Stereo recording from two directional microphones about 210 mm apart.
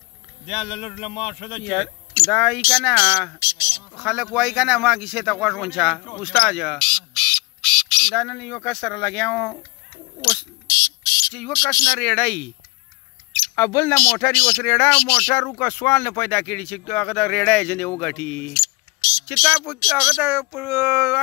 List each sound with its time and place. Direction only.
0.5 s speech: 25° left (ahead or behind)
1.5 s speech: centre (ahead or behind)
3.5 s speech: 10° right (ahead or behind)
3.9 s speech: centre (ahead or behind)
11.2 s speech: 10° left (ahead or behind)
13.6 s speech: 10° left (ahead or behind); by 21.2 s 10° right (ahead or behind)